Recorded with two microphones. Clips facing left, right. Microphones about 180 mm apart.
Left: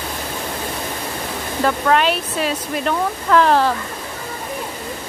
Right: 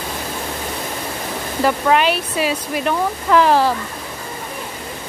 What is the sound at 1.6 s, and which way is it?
Speech, 10° right (ahead or behind).